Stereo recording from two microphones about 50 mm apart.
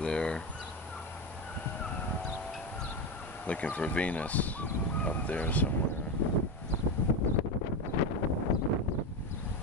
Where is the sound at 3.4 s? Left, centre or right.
Left.